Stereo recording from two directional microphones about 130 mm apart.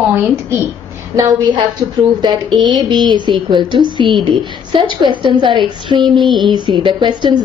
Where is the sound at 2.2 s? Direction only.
35° right (ahead or behind).